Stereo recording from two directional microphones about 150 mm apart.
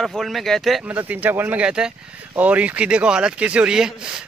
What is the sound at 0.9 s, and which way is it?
Speech, 10° right (ahead or behind).